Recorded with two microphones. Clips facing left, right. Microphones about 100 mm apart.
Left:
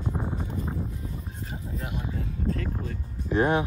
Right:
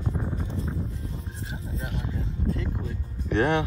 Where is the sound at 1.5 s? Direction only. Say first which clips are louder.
Even; 30° right (ahead or behind).